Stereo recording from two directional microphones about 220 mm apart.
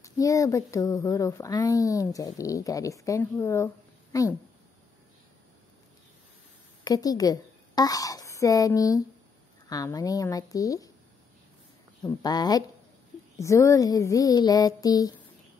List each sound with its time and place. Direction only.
0.0 s speech: 15° left (ahead or behind)
6.8 s a woman's voice: 15° left (ahead or behind)
12.0 s speech: 20° left (ahead or behind)